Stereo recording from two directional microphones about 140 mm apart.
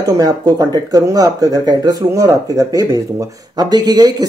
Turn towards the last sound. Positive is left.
turn(degrees=-30)  # may be behind; listen again after turning